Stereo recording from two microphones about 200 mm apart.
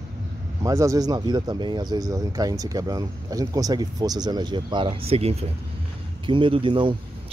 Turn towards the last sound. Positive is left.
turn(degrees=-25)  # may be behind; listen again after turning